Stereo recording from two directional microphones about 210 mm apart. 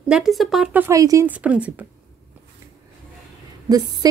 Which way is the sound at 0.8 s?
15° right (ahead or behind).